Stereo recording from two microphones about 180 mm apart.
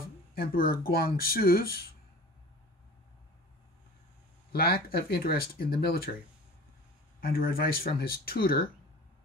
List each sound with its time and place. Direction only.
0.0 s speech: 55° left (ahead or behind)
4.5 s speech: 60° left (ahead or behind)
7.2 s speech: 55° left (ahead or behind)